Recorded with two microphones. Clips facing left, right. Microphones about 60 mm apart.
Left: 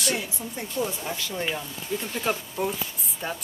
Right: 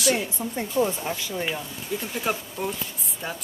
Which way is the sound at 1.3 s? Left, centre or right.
Centre.